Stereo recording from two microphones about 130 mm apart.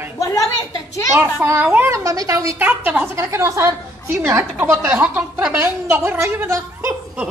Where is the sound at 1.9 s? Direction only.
25° right (ahead or behind).